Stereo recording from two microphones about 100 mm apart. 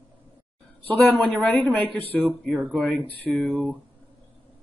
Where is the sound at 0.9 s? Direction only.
15° left (ahead or behind).